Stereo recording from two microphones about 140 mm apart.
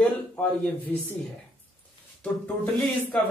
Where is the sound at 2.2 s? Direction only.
10° left (ahead or behind).